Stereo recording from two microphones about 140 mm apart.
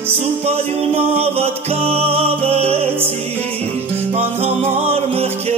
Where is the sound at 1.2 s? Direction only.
45° right (ahead or behind).